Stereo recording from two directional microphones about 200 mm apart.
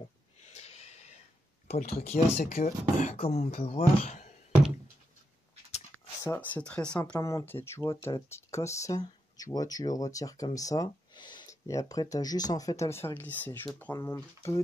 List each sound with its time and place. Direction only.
0.5 s snort: 30° left (ahead or behind)
1.7 s speech: 30° left (ahead or behind)
6.2 s speech: 10° left (ahead or behind)